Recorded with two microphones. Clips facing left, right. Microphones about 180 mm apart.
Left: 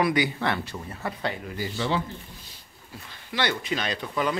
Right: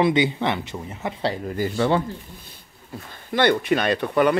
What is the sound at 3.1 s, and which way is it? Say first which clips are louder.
Speech: right 9 dB; 50° right (ahead or behind).